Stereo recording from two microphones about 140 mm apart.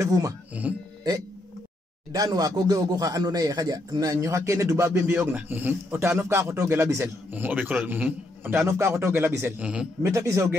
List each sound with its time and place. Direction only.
0.0 s a man's voice: 25° right (ahead or behind)
2.1 s a man's voice: 25° right (ahead or behind)
9.6 s a man's voice: 10° right (ahead or behind)
10.0 s a man's voice: 20° right (ahead or behind)